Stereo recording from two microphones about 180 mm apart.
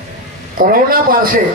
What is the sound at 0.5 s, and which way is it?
Speech, 50° right (ahead or behind).